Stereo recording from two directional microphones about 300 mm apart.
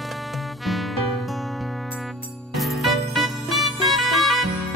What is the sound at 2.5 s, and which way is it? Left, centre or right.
Music, centre.